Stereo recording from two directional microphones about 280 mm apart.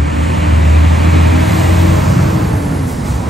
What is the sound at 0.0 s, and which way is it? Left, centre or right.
Vehicle, centre.